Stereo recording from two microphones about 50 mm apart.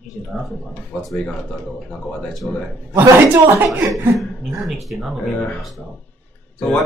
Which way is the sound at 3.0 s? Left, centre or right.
Right.